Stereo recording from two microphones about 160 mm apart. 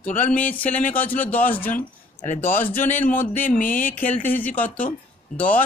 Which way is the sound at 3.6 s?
60° left (ahead or behind).